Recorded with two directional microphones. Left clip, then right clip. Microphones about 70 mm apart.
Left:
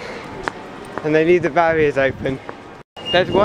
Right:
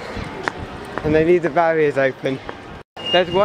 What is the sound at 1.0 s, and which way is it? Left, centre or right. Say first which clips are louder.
Speech: left 1 dB; left.